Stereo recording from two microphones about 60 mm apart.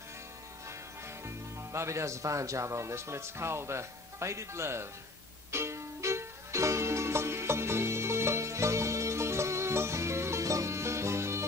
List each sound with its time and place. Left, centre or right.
1.2 s speech: right
5.5 s music: right